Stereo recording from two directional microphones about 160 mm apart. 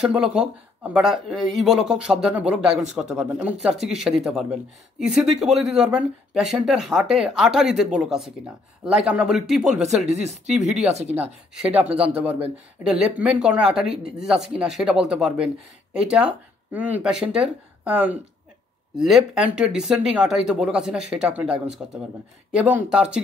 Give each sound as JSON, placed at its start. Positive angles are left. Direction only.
{"t": 0.0, "sound": "speech", "side_deg": -5}
{"t": 10.0, "sound": "speech", "side_deg": -45}
{"t": 11.5, "sound": "speech", "side_deg": -5}